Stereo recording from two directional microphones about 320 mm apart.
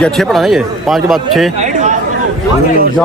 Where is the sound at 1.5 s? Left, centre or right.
Right.